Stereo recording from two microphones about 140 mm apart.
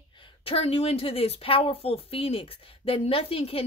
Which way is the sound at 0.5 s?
45° left (ahead or behind).